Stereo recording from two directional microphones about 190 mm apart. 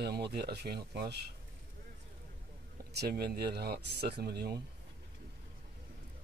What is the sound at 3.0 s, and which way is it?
Speech, 55° right (ahead or behind).